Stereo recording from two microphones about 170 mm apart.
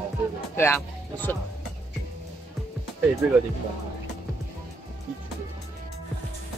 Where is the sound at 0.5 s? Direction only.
15° left (ahead or behind).